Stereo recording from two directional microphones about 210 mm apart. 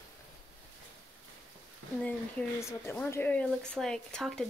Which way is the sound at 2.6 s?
10° left (ahead or behind).